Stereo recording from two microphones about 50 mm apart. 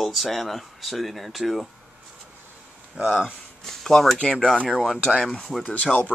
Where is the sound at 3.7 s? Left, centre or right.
Centre.